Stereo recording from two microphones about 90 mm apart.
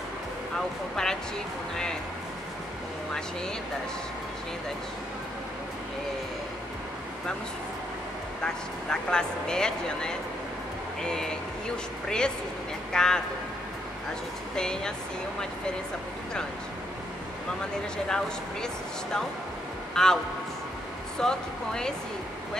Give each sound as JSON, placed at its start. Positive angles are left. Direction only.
{"t": 1.0, "sound": "speech", "side_deg": 5}
{"t": 8.9, "sound": "speech", "side_deg": 10}
{"t": 14.5, "sound": "speech", "side_deg": 5}
{"t": 17.9, "sound": "speech", "side_deg": 10}
{"t": 19.9, "sound": "a man's voice", "side_deg": 5}
{"t": 21.2, "sound": "speech", "side_deg": 5}